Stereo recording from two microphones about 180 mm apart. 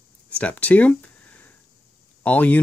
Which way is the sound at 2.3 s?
10° left (ahead or behind).